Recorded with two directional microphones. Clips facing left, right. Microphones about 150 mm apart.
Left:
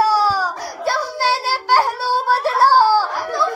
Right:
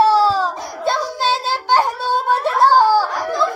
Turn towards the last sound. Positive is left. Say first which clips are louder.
# right 1 dB
turn(degrees=-15)  # may be behind; listen again after turning